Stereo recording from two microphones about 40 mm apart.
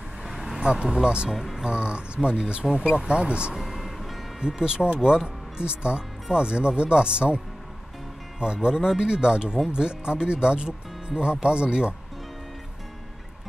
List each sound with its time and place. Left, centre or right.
0.4 s speech: right
1.3 s speech: centre
1.6 s speech: right
3.5 s music: centre
4.4 s speech: centre